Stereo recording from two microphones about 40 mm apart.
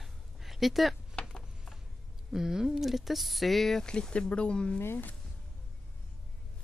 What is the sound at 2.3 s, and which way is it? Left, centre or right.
Speech, centre.